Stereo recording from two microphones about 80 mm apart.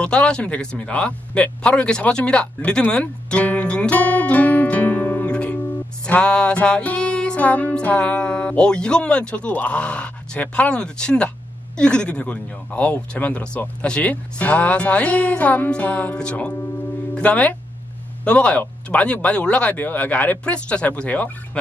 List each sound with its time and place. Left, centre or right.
0.0 s music: centre
17.1 s speech: centre
18.6 s music: centre